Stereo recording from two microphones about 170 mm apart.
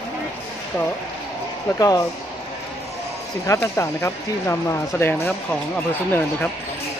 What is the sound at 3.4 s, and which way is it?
Speech, 15° left (ahead or behind).